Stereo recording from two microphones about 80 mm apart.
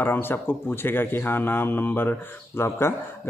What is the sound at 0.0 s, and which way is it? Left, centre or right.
Speech, left.